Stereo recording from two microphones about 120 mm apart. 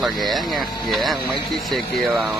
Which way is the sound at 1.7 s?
Centre (ahead or behind).